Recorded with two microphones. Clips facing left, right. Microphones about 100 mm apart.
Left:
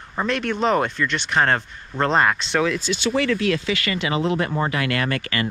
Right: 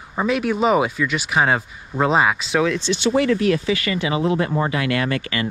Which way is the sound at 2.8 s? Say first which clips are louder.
Right 3 dB; 20° right (ahead or behind).